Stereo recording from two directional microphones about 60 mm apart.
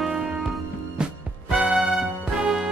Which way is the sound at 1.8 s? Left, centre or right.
Centre.